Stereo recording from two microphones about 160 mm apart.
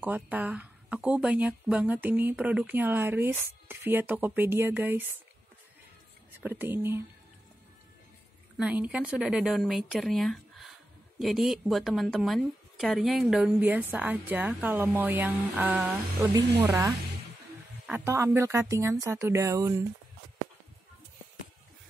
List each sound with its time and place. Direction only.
0.0 s speech: 10° right (ahead or behind)
6.4 s speech: 10° right (ahead or behind)
8.5 s a woman's voice: 10° right (ahead or behind)
16.6 s speech: 20° right (ahead or behind)